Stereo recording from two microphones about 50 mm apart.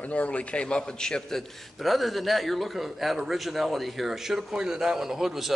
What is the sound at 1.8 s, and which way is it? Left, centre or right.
A man's voice, centre.